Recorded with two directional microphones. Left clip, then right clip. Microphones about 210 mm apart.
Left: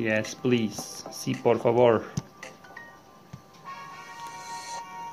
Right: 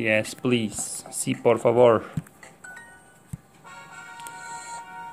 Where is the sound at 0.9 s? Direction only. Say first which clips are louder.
Right 3 dB; 20° right (ahead or behind).